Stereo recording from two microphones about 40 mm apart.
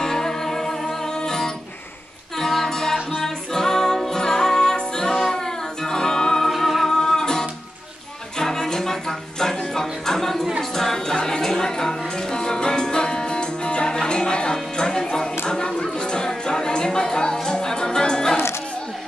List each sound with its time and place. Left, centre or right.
0.0 s music: centre
6.5 s music: centre
7.0 s music: centre
15.5 s a sound: centre